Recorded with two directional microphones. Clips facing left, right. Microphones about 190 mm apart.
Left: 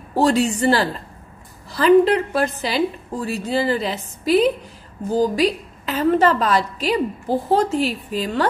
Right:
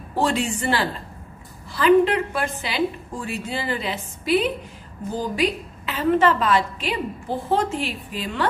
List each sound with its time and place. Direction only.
0.1 s a woman's voice: 40° left (ahead or behind)